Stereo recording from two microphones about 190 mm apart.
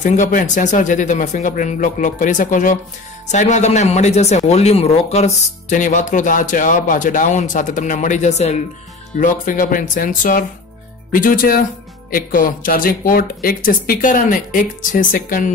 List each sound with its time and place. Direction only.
0.0 s speech: 40° left (ahead or behind)